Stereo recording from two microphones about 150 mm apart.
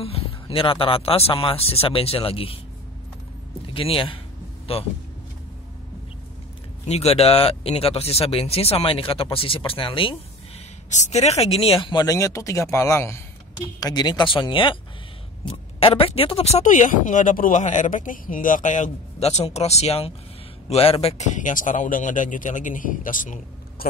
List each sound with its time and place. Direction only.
0.0 s speech: 40° left (ahead or behind)
3.6 s speech: 35° left (ahead or behind)
6.9 s speech: 45° left (ahead or behind)
10.9 s speech: 50° left (ahead or behind)